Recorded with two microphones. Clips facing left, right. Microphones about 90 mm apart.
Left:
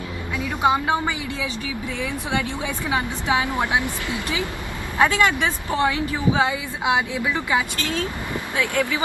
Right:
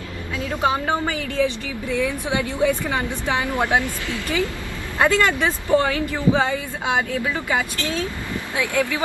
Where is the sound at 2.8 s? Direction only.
15° left (ahead or behind).